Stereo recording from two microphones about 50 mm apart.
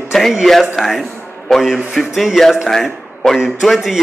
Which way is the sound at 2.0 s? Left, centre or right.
Centre.